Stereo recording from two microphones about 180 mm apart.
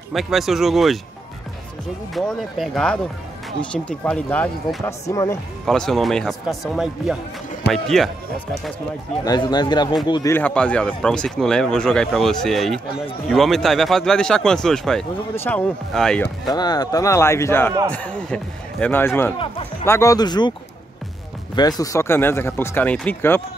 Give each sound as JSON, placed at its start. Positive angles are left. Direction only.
{"t": 0.1, "sound": "speech", "side_deg": 0}
{"t": 2.1, "sound": "speech", "side_deg": 0}
{"t": 5.7, "sound": "speech", "side_deg": 0}
{"t": 9.2, "sound": "speech", "side_deg": 20}
{"t": 10.3, "sound": "speech", "side_deg": 5}
{"t": 16.5, "sound": "speech", "side_deg": 20}
{"t": 21.5, "sound": "speech", "side_deg": 20}